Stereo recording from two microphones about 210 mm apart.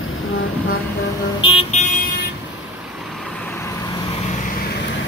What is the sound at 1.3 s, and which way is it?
Vehicle, 25° left (ahead or behind).